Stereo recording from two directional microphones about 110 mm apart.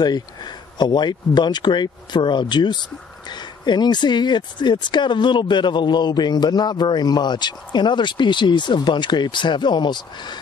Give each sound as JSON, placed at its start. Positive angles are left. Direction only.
{"t": 0.0, "sound": "speech", "side_deg": 40}